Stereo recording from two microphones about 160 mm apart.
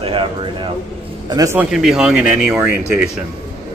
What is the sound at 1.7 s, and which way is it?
Speech, 5° right (ahead or behind).